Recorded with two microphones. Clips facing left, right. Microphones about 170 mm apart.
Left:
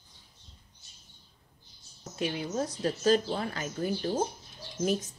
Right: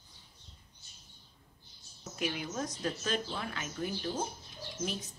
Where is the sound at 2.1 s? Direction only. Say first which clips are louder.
Left 5 dB; 30° left (ahead or behind).